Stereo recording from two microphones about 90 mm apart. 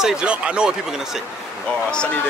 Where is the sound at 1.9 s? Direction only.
10° left (ahead or behind).